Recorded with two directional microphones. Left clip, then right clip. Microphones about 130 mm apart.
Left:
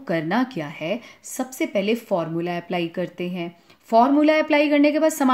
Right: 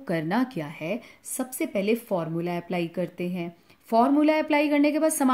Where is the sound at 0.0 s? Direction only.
5° right (ahead or behind).